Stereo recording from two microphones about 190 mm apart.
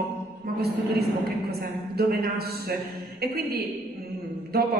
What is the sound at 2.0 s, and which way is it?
A man's voice, 55° right (ahead or behind).